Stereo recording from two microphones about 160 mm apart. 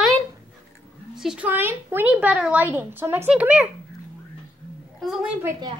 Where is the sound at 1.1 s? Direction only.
5° right (ahead or behind).